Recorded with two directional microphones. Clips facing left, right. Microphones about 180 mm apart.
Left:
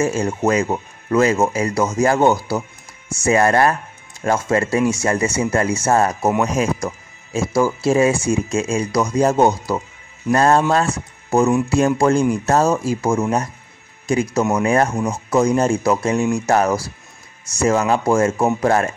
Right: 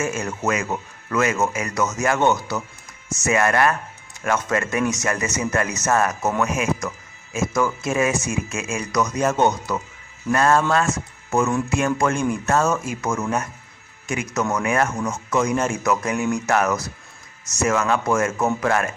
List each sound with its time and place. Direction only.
0.0 s speech: 30° left (ahead or behind)